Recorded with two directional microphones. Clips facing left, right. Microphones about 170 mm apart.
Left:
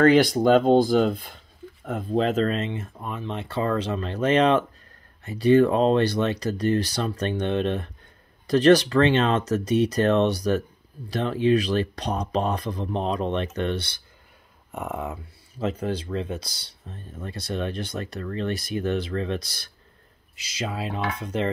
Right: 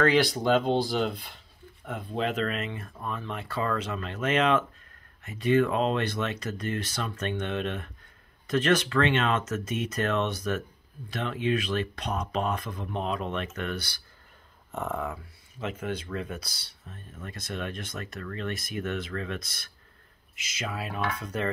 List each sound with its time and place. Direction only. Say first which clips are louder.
0.0 s speech: left 6 dB; 45° left (ahead or behind); by 14.0 s 25° left (ahead or behind)
14.7 s speech: left 1 dB; 15° left (ahead or behind)
15.6 s speech: left 6 dB; 35° left (ahead or behind)